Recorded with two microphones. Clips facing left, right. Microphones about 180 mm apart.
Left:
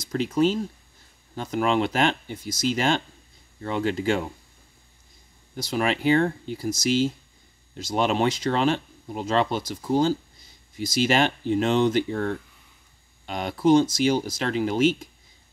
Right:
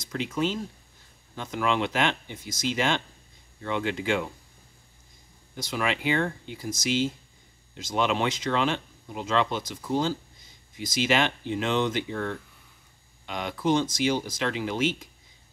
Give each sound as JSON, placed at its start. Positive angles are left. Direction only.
{"t": 0.1, "sound": "speech", "side_deg": 35}
{"t": 5.7, "sound": "speech", "side_deg": 40}